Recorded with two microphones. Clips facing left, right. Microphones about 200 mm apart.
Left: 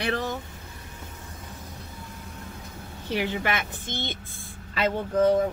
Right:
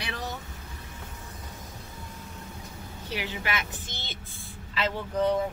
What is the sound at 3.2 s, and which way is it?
Speech, 55° left (ahead or behind).